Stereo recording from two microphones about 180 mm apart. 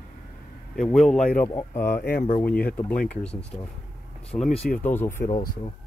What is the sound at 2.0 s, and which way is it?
Speech, 60° left (ahead or behind).